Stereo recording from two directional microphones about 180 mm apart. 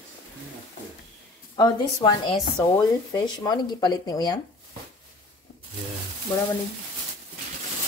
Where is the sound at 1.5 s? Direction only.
20° left (ahead or behind).